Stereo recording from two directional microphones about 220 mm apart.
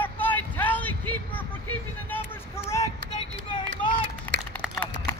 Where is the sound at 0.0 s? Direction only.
10° left (ahead or behind).